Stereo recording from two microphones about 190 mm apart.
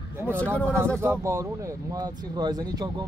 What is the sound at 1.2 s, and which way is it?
Speech, 15° right (ahead or behind).